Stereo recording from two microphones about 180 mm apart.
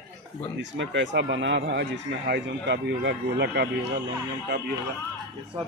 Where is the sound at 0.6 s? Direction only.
85° right; by 3.6 s 70° right (ahead or behind).